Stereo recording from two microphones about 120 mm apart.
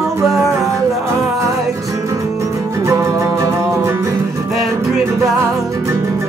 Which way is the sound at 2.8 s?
25° right (ahead or behind).